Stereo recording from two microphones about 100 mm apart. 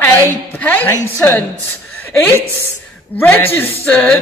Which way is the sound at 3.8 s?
15° left (ahead or behind).